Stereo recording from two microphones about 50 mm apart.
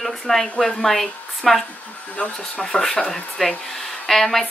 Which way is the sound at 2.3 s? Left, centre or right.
Centre.